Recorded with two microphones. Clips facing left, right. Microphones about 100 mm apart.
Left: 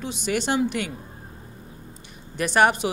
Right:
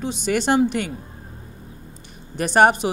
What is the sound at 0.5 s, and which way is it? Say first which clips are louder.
Speech: right 5 dB; 40° right (ahead or behind).